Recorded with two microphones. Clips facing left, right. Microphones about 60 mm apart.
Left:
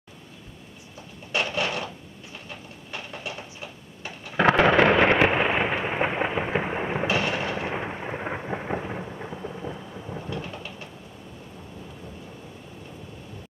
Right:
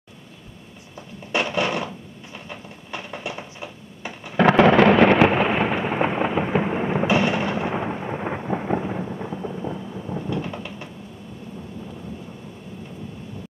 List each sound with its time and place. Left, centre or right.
1.3 s a sound: centre
2.9 s a sound: right
4.4 s thunder: centre
7.1 s fireworks: right
7.7 s thunder: centre
10.3 s thunder: centre